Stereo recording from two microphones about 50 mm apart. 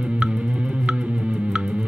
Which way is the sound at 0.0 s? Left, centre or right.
Right.